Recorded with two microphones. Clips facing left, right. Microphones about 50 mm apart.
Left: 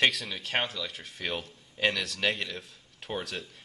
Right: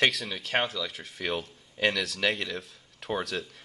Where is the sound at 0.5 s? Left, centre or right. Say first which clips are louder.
Right 3 dB; right.